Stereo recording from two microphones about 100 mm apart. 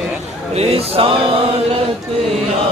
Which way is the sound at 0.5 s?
85° right.